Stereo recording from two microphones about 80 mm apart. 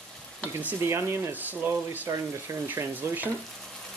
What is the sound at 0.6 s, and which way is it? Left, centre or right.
Speech, right.